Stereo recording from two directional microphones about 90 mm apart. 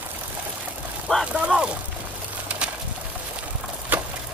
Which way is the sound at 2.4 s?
15° right (ahead or behind).